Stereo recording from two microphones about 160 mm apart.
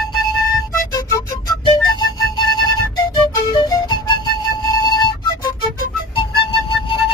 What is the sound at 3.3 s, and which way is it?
Music, 25° left (ahead or behind).